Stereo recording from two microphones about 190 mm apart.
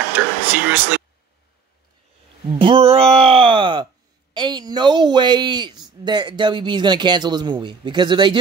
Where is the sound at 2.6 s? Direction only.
30° right (ahead or behind).